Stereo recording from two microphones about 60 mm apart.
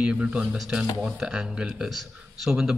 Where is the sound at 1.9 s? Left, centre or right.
Centre.